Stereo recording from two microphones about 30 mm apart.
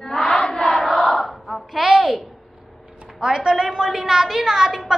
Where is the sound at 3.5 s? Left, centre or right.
Centre.